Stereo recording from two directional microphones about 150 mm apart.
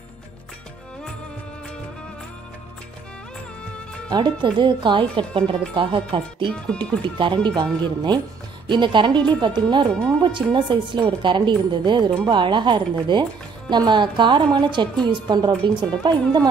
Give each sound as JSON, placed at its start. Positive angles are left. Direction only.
{"t": 4.1, "sound": "speech", "side_deg": -30}